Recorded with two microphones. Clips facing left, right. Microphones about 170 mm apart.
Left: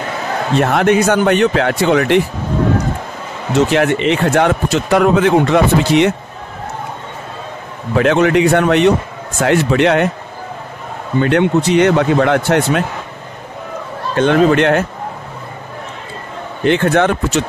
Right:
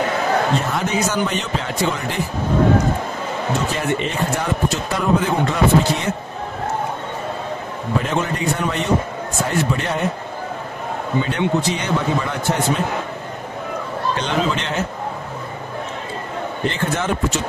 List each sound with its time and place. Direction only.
0.6 s speech: 70° left (ahead or behind)
3.5 s speech: 80° left
7.9 s speech: 80° left
11.1 s speech: 70° left (ahead or behind)
14.1 s speech: 55° left (ahead or behind)
16.6 s speech: 70° left (ahead or behind)